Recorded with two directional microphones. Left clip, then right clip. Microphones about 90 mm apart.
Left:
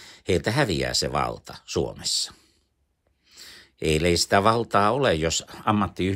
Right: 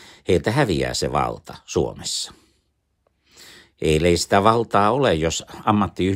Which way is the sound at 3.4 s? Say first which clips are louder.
Right 4 dB; 35° right (ahead or behind).